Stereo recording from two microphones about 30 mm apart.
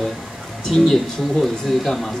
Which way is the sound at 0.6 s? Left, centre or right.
Centre.